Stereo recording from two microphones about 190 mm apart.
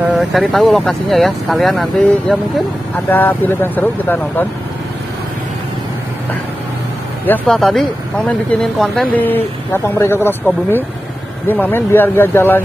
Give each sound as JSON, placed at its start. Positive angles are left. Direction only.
{"t": 0.1, "sound": "speech", "side_deg": 0}
{"t": 7.2, "sound": "speech", "side_deg": 5}